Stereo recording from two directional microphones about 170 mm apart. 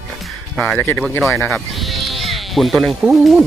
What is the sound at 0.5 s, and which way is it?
Speech, 5° left (ahead or behind).